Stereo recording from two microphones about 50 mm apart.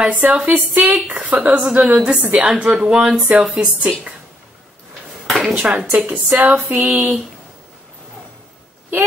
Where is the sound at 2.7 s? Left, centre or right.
Centre.